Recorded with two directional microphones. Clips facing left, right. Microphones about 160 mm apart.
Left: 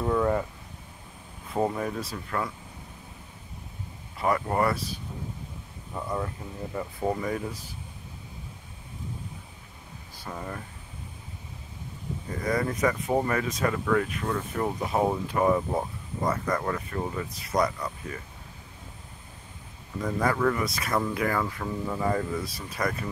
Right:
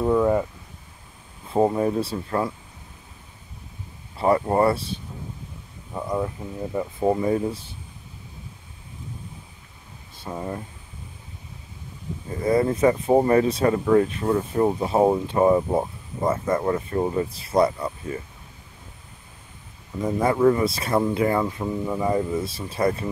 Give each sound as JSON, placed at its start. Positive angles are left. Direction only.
{"t": 0.0, "sound": "a sound", "side_deg": -15}
{"t": 1.5, "sound": "speech", "side_deg": -30}
{"t": 4.2, "sound": "speech", "side_deg": -30}
{"t": 5.9, "sound": "speech", "side_deg": -15}
{"t": 7.1, "sound": "speech", "side_deg": -30}
{"t": 10.1, "sound": "speech", "side_deg": -25}
{"t": 12.4, "sound": "speech", "side_deg": -25}
{"t": 20.0, "sound": "speech", "side_deg": -25}